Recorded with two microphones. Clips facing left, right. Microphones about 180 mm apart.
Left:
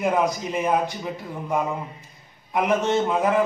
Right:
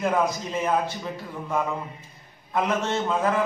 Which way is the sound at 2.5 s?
15° left (ahead or behind).